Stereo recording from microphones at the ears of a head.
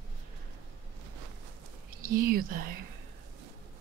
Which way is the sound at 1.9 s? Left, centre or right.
Right.